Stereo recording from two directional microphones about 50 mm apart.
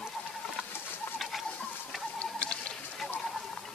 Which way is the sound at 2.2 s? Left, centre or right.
Left.